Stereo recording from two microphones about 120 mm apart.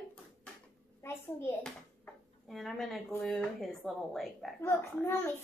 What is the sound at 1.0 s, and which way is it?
Speech, 20° left (ahead or behind).